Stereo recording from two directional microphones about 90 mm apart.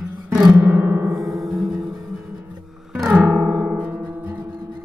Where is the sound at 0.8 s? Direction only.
25° right (ahead or behind).